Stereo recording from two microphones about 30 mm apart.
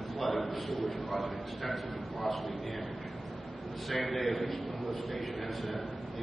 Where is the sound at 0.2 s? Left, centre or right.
Centre.